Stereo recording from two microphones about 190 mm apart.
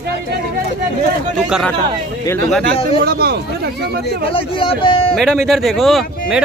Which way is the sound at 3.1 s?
55° right (ahead or behind).